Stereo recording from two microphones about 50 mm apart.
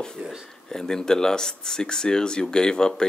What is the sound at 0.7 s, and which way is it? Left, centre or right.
Speech, centre.